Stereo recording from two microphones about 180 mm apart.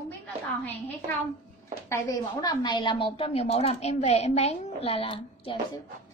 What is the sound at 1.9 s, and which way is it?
A woman's voice, 20° left (ahead or behind).